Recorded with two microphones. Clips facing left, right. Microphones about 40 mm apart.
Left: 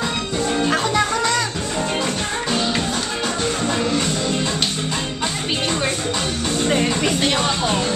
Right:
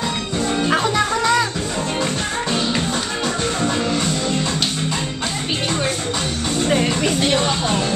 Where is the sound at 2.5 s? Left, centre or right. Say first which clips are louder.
Even; centre.